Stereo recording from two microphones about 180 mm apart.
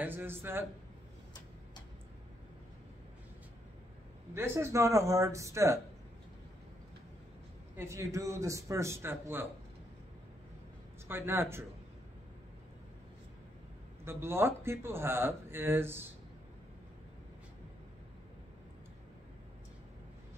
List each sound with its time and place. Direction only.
0.0 s speech: 10° right (ahead or behind)
4.3 s speech: 15° right (ahead or behind)
7.7 s speech: 15° right (ahead or behind)
11.1 s speech: 15° right (ahead or behind)
14.0 s speech: 15° right (ahead or behind)